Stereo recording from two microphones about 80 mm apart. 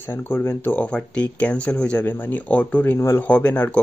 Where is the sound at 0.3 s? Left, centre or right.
Left.